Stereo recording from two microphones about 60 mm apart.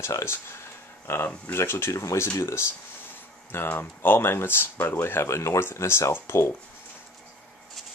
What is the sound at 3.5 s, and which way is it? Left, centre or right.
Speech, left.